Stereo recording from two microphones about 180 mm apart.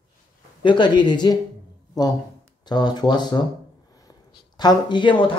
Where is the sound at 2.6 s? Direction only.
25° left (ahead or behind).